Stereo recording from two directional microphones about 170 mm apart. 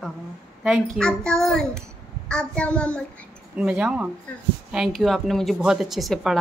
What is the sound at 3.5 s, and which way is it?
A woman's voice, 5° right (ahead or behind).